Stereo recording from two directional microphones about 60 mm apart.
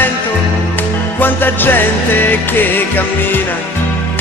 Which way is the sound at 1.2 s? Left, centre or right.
Left.